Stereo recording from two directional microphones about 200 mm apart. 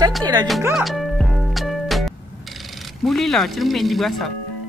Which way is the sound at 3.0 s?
Centre (ahead or behind).